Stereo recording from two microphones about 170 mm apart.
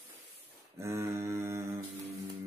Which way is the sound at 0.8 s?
15° right (ahead or behind).